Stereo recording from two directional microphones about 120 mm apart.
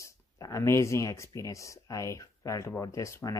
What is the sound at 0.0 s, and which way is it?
Speech, 25° left (ahead or behind).